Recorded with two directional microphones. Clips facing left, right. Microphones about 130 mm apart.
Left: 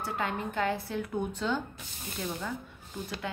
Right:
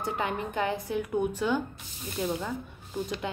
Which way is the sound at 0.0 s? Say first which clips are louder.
Right 2 dB; 20° right (ahead or behind).